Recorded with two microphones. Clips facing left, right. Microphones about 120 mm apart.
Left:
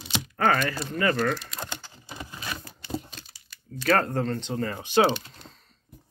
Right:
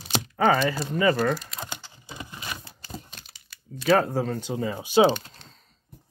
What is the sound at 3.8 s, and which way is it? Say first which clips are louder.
Speech: right 2 dB; 5° right (ahead or behind).